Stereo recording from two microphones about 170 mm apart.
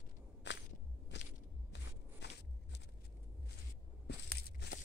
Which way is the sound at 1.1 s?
90° left.